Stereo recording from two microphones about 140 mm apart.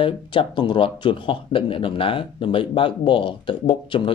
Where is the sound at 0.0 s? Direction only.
40° left (ahead or behind).